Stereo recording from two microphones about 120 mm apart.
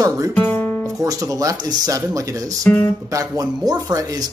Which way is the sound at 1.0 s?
30° right (ahead or behind).